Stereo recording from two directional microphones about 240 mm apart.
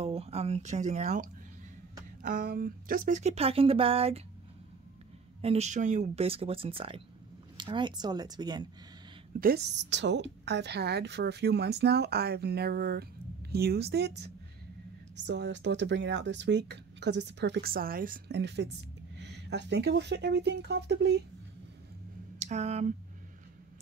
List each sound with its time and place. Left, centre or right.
0.0 s speech: right
5.4 s speech: right
9.4 s a woman's voice: right
22.4 s speech: right